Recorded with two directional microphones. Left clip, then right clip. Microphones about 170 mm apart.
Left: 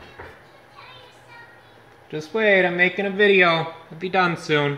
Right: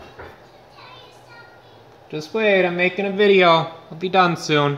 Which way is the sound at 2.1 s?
10° left (ahead or behind).